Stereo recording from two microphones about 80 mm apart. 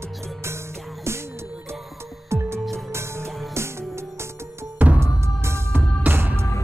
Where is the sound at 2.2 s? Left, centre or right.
Right.